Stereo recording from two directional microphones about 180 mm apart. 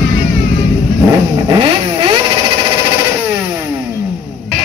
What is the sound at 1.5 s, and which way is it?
Vehicle, 30° right (ahead or behind).